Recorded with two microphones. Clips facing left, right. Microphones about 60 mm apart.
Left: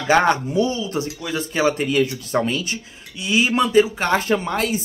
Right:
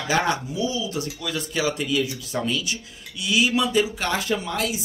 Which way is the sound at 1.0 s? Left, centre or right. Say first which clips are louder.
Left 4 dB; left.